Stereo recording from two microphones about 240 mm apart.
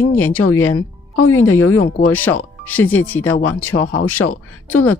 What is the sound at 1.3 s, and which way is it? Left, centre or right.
Speech, centre.